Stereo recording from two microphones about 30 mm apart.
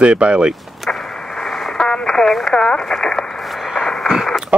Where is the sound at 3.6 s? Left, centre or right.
Centre.